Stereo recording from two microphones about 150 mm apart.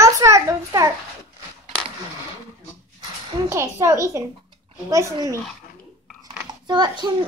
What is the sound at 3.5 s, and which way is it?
Speech, 20° right (ahead or behind).